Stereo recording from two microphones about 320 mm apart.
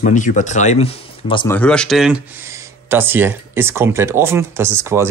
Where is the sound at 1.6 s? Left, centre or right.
Centre.